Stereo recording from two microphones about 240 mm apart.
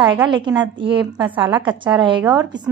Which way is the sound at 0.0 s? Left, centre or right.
Centre.